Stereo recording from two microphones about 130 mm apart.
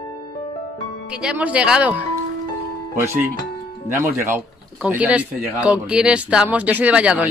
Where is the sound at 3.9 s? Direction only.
20° right (ahead or behind).